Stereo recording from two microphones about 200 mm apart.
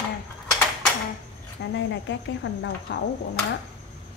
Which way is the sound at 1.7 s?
65° left (ahead or behind).